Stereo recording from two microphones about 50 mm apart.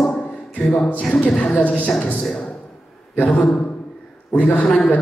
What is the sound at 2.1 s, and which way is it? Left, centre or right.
A man's voice, centre.